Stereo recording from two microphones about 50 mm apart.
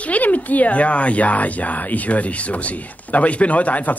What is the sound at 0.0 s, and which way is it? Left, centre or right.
Speech, left.